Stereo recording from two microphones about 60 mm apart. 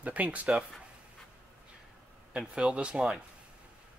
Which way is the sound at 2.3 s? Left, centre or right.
Centre.